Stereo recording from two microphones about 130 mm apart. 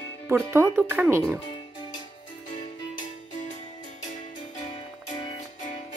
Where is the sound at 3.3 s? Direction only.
75° left (ahead or behind).